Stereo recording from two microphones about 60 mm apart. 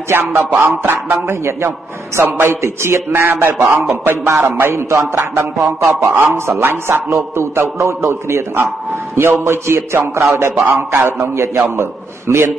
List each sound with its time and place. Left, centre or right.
0.1 s a man's voice: right
2.2 s a man's voice: right
2.6 s a man's voice: right
3.9 s a man's voice: right
10.7 s a man's voice: right
11.1 s a man's voice: right